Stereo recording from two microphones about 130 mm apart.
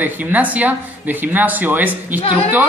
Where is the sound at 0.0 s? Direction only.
10° right (ahead or behind).